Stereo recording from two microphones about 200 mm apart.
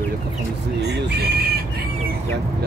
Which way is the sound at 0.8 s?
55° right (ahead or behind).